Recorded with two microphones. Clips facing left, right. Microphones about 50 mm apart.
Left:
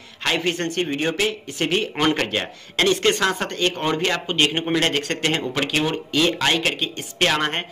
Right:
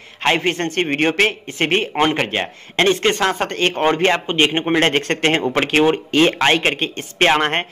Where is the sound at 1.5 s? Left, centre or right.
Right.